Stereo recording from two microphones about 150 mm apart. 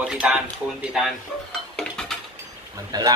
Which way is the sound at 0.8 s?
5° right (ahead or behind).